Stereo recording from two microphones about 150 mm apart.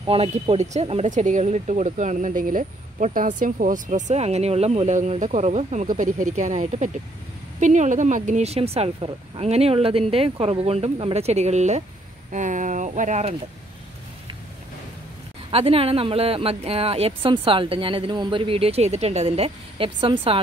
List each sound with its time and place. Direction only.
0.0 s speech: 40° right (ahead or behind)
15.5 s speech: 40° right (ahead or behind)